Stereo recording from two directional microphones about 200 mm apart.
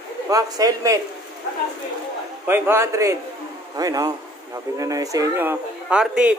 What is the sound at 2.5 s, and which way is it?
Speech, 10° right (ahead or behind).